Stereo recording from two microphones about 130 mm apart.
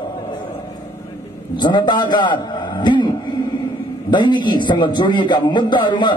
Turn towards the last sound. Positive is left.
turn(degrees=35)  # may be behind; listen again after turning